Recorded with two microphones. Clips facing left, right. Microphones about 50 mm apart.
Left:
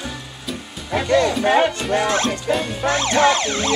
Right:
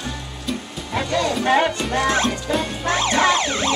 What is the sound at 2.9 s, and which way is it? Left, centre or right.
Music, centre.